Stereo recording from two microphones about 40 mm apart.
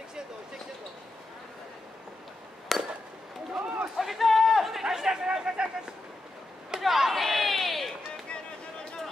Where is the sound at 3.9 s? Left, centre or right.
Centre.